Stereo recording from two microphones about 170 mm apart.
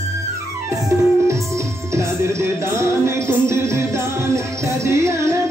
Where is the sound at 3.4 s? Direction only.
15° right (ahead or behind).